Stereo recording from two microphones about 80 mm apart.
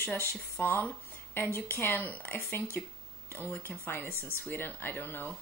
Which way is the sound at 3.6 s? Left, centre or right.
Left.